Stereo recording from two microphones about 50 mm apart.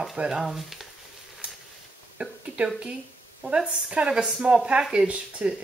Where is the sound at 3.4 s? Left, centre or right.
Right.